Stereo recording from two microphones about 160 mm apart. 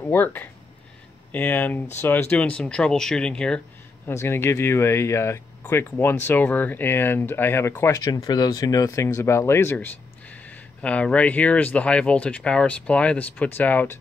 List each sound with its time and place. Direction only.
0.0 s speech: 10° left (ahead or behind)
4.1 s speech: 15° left (ahead or behind)